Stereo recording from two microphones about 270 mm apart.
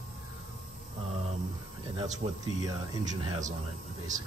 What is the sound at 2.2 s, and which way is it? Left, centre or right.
Speech, right.